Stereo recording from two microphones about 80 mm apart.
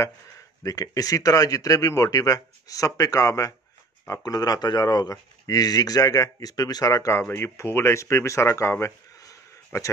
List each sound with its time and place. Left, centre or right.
0.7 s speech: left
7.2 s speech: left